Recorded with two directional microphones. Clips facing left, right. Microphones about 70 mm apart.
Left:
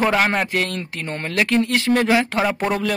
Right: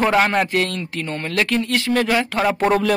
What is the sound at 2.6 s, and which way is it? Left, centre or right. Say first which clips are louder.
Speech: right 4 dB; centre.